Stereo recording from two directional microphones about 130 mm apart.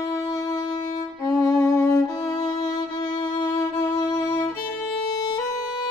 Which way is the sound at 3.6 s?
25° left (ahead or behind).